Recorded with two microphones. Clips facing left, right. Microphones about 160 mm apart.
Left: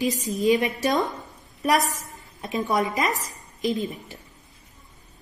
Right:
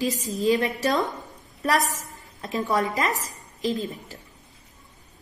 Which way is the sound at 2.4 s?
20° left (ahead or behind).